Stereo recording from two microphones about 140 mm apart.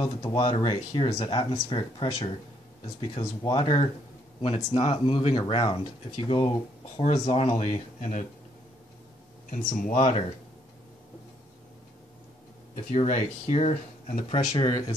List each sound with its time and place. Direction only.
0.2 s speech: 45° left (ahead or behind)
4.4 s speech: 45° left (ahead or behind); by 8.3 s 60° left (ahead or behind)
9.5 s speech: 75° left (ahead or behind)
12.9 s speech: 50° left (ahead or behind)
14.3 s speech: 30° left (ahead or behind)